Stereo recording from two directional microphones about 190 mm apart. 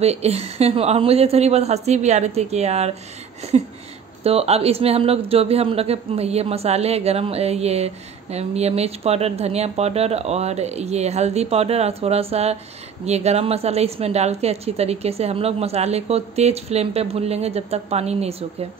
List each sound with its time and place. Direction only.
0.0 s speech: 35° right (ahead or behind)
4.2 s speech: 30° right (ahead or behind)